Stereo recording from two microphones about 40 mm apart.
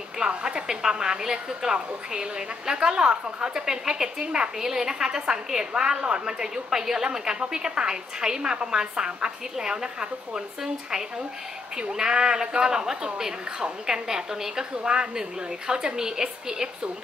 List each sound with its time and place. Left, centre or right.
0.3 s a woman's voice: right